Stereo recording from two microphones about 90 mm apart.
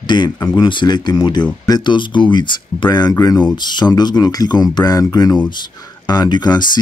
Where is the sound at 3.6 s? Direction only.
55° left (ahead or behind).